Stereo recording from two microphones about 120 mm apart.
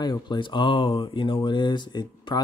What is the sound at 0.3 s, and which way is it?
Speech, 40° left (ahead or behind).